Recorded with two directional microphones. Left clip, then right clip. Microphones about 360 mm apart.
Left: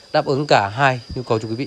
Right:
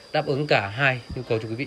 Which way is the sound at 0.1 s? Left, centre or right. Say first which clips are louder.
Left 6 dB; centre.